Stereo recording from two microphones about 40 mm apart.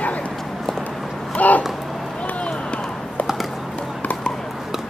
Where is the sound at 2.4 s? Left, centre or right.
Left.